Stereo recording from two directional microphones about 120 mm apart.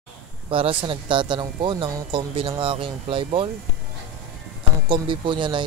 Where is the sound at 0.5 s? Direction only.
45° right (ahead or behind).